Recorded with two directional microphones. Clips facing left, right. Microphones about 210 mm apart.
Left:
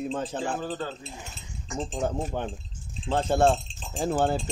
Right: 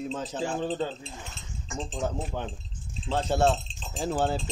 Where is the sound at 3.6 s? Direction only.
15° left (ahead or behind).